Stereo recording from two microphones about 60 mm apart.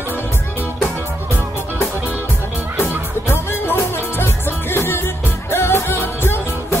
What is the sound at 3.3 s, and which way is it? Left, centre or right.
Music, left.